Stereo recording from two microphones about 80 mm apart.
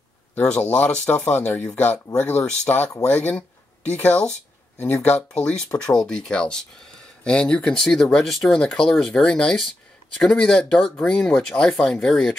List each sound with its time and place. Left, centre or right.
0.4 s speech: centre